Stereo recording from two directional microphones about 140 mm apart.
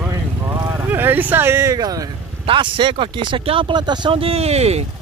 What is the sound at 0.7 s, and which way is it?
Speech, 15° right (ahead or behind).